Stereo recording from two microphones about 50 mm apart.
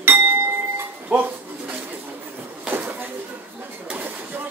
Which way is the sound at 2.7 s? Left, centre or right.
Right.